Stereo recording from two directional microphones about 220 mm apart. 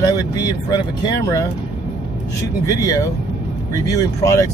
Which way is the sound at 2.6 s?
15° left (ahead or behind).